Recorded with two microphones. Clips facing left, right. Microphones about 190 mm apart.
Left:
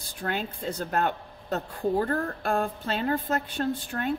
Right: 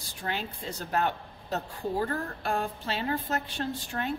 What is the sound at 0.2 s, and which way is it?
Speech, 55° left (ahead or behind).